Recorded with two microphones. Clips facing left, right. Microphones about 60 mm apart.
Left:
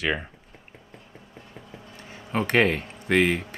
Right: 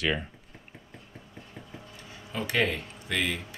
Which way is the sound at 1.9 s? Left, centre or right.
Left.